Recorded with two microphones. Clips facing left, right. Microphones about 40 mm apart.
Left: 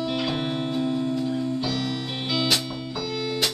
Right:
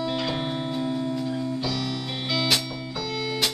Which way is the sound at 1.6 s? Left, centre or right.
Left.